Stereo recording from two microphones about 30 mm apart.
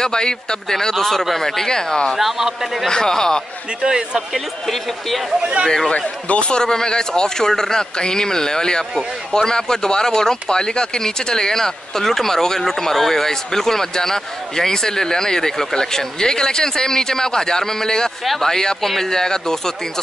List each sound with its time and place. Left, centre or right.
0.0 s speech: left
0.9 s speech: centre
1.6 s speech: centre
2.1 s a man's voice: centre
2.9 s speech: left
3.8 s speech: right
6.2 s a man's voice: left
6.5 s speech: left